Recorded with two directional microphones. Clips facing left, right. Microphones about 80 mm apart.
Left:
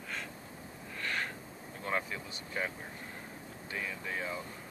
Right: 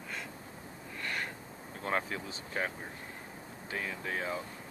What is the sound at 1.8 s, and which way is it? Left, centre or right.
Speech, right.